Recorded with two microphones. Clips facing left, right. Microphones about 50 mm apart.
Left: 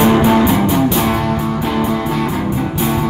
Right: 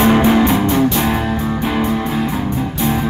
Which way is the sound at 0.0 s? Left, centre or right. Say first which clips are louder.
Left 1 dB; centre.